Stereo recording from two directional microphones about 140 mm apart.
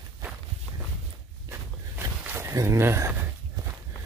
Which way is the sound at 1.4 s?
15° right (ahead or behind).